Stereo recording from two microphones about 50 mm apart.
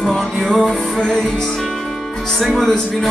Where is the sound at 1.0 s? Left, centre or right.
Centre.